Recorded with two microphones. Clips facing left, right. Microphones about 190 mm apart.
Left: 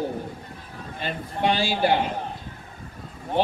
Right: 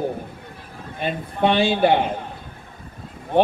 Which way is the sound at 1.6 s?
25° right (ahead or behind).